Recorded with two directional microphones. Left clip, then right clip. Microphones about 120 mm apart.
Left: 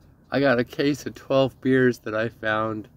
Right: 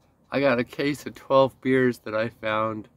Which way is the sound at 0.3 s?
15° right (ahead or behind).